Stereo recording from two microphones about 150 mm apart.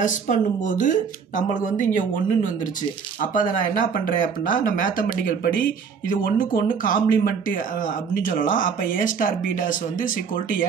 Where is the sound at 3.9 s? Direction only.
60° left (ahead or behind).